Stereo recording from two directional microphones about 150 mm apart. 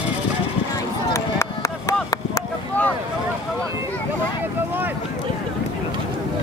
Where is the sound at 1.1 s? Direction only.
20° left (ahead or behind).